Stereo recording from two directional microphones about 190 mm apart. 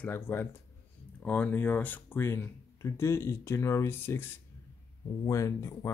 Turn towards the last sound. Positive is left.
turn(degrees=15)  # may be behind; listen again after turning